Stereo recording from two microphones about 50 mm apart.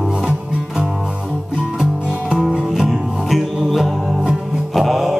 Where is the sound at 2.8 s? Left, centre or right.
Centre.